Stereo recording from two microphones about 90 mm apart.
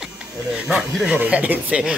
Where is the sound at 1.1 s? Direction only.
15° right (ahead or behind).